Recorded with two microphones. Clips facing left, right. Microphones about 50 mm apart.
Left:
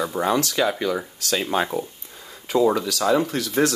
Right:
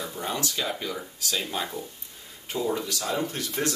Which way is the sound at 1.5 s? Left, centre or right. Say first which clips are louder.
Left 9 dB; left.